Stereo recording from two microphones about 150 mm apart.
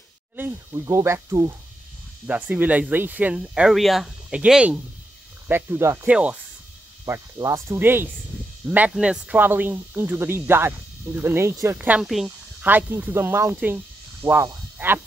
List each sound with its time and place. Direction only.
0.4 s speech: 20° right (ahead or behind)
7.1 s speech: 25° right (ahead or behind)
12.0 s speech: centre (ahead or behind)
12.6 s speech: 10° right (ahead or behind)